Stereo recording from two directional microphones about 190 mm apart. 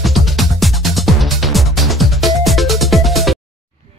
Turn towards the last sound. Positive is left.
turn(degrees=0)  # may be behind; listen again after turning